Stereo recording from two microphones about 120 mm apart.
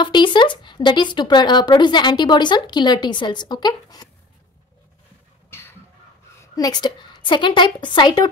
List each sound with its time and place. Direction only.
0.0 s speech: 40° left (ahead or behind)
5.5 s a sound: 20° left (ahead or behind)
6.4 s a woman's voice: 30° left (ahead or behind)